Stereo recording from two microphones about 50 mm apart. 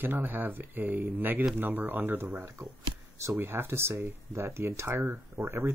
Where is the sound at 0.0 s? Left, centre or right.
Right.